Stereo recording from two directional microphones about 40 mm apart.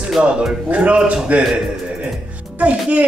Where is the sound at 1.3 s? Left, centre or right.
Right.